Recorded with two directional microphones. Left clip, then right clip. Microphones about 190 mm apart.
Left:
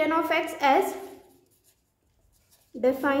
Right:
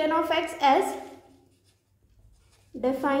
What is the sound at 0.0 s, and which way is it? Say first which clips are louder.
Speech: even; 15° left (ahead or behind).